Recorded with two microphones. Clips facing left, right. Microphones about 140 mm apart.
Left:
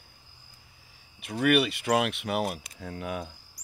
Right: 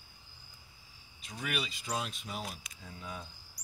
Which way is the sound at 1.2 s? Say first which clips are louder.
Left 14 dB; 65° left (ahead or behind).